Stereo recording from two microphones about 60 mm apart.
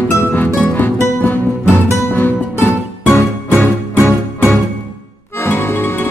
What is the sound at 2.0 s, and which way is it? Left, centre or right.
Music, left.